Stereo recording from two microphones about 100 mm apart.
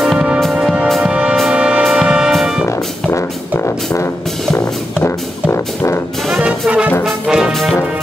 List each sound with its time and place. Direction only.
0.4 s music: centre (ahead or behind)
1.5 s brass instrument: 10° right (ahead or behind)
2.6 s music: 25° left (ahead or behind)
6.2 s brass instrument: centre (ahead or behind)